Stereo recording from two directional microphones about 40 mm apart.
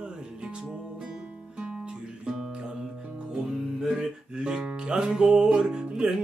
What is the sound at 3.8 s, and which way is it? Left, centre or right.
Music, right.